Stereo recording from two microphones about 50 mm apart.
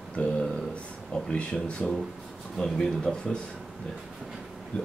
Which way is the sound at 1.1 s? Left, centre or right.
Centre.